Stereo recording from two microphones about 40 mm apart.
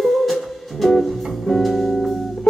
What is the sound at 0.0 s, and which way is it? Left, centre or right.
Music, centre.